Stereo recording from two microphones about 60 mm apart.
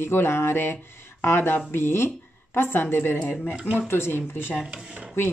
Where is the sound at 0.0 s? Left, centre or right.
Left.